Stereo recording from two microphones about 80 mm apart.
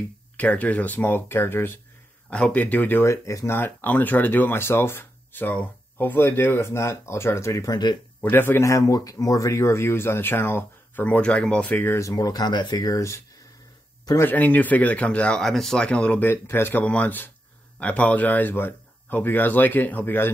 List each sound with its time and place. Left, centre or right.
0.4 s speech: centre
2.2 s speech: centre
3.1 s speech: left
7.7 s speech: left
8.2 s speech: left
8.6 s speech: left
12.0 s speech: left
12.8 s speech: left
14.3 s speech: centre
16.3 s speech: left
16.8 s speech: centre